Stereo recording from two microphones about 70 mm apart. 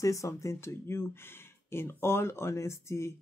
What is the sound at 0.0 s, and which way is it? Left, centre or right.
Speech, left.